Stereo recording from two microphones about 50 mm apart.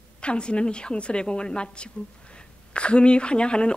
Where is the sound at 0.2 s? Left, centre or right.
Left.